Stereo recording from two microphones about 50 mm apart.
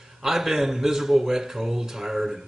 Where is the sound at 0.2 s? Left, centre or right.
Centre.